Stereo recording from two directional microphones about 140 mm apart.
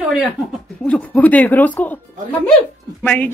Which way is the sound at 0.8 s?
10° left (ahead or behind).